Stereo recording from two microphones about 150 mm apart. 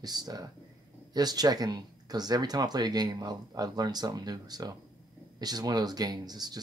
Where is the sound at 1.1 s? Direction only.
25° right (ahead or behind).